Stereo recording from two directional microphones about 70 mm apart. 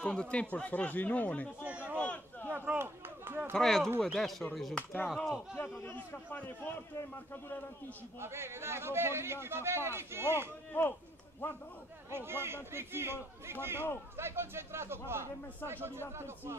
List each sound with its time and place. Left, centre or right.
0.0 s speech: centre
1.6 s a sound: centre
2.0 s a sound: left
2.8 s a sound: right
3.5 s speech: centre
4.7 s speech: left
5.1 s speech: centre
5.6 s speech: left
8.2 s a man's voice: right
10.7 s speech: left
12.1 s a man's voice: right